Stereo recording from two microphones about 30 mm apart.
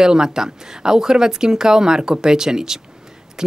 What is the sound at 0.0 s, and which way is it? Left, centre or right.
Speech, right.